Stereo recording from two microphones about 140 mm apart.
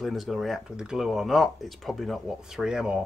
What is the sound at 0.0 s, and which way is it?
Speech, centre (ahead or behind).